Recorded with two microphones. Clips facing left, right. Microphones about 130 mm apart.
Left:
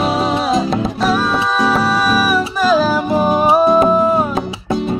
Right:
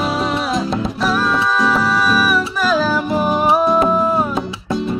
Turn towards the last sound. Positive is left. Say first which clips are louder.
# left 3 dB
turn(degrees=15)  # may be behind; listen again after turning